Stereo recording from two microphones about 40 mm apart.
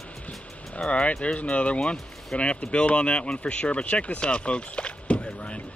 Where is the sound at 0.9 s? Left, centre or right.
Left.